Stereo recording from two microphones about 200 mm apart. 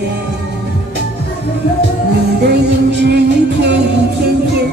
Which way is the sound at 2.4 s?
55° right (ahead or behind).